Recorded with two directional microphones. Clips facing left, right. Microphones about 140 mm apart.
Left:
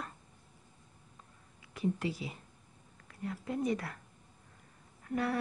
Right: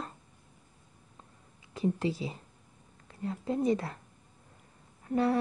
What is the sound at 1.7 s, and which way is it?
A woman's voice, 30° right (ahead or behind).